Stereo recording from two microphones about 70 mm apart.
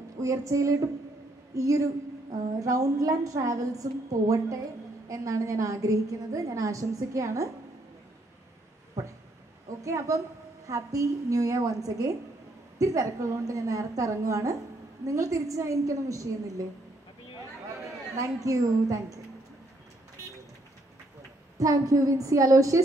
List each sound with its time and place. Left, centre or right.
0.2 s a woman's voice: right
9.0 s a woman's voice: right
18.1 s a woman's voice: right
21.5 s a woman's voice: right